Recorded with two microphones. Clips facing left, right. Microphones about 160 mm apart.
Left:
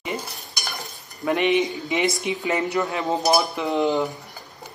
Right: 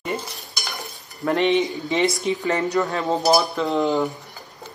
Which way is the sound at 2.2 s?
15° left (ahead or behind).